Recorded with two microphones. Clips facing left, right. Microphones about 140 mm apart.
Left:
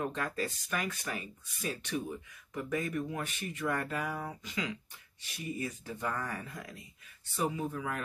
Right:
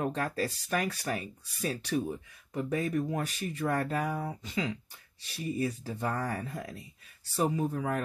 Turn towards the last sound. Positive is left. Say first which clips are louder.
# right 5 dB
turn(degrees=-35)  # may be behind; listen again after turning